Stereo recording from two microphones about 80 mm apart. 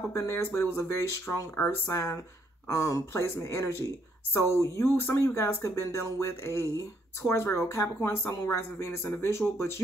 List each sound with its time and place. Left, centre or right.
0.1 s speech: left
2.7 s speech: left